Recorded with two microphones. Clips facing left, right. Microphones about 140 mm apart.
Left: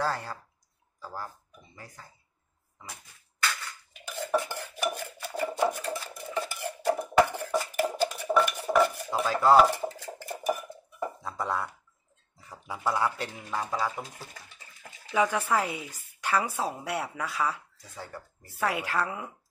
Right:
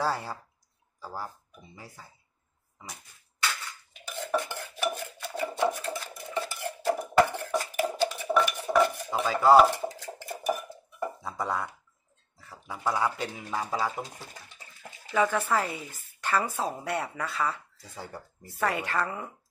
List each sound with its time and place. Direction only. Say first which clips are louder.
0.0 s speech: right 1 dB; 10° right (ahead or behind)
4.4 s stir: even; 5° left (ahead or behind)
4.9 s a sound: even; 5° left (ahead or behind)
7.2 s stir: even; 5° left (ahead or behind)
8.7 s cutlery: even; 10° left (ahead or behind)
10.2 s dishes: left 1 dB; 10° right (ahead or behind)
11.0 s music: right 1 dB; centre (ahead or behind)
12.4 s a sound: left 2 dB; 15° left (ahead or behind)
12.7 s speech: even; centre (ahead or behind)
15.0 s speech: even; 15° left (ahead or behind)
17.8 s speech: right 1 dB; 10° right (ahead or behind)
18.6 s a woman's voice: even; 10° left (ahead or behind)